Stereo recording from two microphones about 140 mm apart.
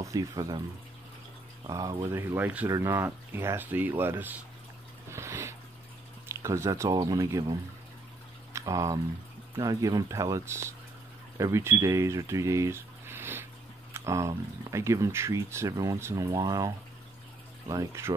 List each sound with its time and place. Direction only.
0.0 s speech: 25° right (ahead or behind)
1.7 s speech: 25° right (ahead or behind)
2.1 s speech: 15° right (ahead or behind)
5.1 s a sound: 20° right (ahead or behind)
6.2 s speech: 20° right (ahead or behind)
8.5 s speech: 20° right (ahead or behind)